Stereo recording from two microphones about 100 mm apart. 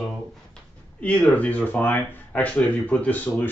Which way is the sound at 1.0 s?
15° left (ahead or behind).